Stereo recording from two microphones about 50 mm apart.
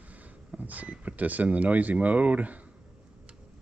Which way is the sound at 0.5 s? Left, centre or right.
Right.